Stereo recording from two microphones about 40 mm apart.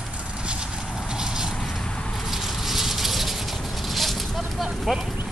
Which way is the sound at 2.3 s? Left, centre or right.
Centre.